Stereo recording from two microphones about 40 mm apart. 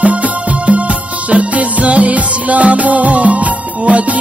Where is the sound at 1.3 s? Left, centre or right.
Right.